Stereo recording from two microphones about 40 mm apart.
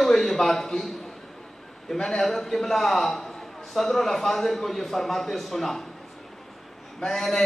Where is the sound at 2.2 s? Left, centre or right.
Centre.